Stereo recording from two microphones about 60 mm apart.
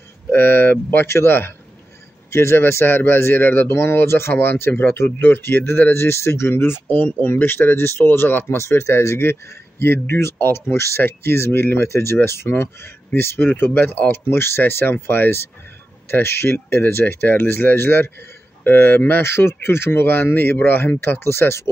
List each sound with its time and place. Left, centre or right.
0.3 s speech: left
6.9 s speech: left
8.5 s speech: left